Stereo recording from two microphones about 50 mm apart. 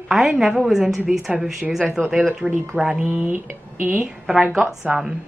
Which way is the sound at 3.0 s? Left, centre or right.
Right.